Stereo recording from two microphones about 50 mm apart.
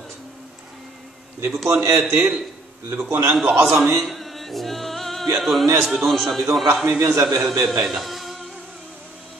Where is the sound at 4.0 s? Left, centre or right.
Centre.